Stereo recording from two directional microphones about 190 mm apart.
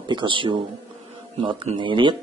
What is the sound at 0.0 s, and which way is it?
Speech, 25° right (ahead or behind).